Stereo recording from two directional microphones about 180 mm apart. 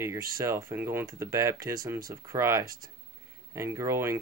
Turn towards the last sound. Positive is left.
turn(degrees=-15)  # may be behind; listen again after turning